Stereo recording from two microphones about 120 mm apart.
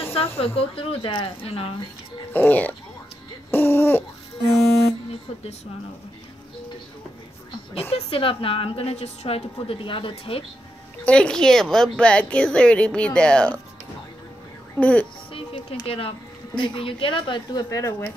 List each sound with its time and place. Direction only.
0.1 s speech: 50° left (ahead or behind)
2.3 s a woman's voice: 15° left (ahead or behind)
7.9 s speech: 50° left (ahead or behind); by 9.4 s 65° left (ahead or behind)
9.6 s speech: 45° left (ahead or behind)
11.1 s a woman's voice: 10° left (ahead or behind)
14.8 s a woman's voice: 10° left (ahead or behind)
15.3 s a woman's voice: 50° left (ahead or behind); by 18.1 s 25° left (ahead or behind)